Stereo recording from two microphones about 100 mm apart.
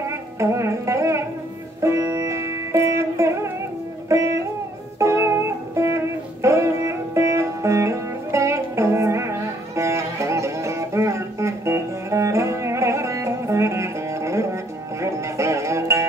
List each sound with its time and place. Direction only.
0.0 s music: 30° right (ahead or behind)